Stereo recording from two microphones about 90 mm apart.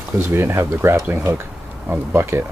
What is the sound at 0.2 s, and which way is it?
Speech, 25° right (ahead or behind).